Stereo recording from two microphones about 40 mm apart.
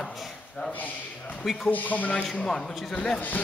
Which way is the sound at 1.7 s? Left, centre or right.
Left.